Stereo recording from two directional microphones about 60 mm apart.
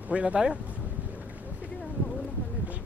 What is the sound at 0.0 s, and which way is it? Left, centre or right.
Speech, right.